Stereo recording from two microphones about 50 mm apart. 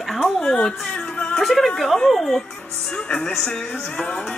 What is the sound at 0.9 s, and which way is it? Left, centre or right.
Music, left.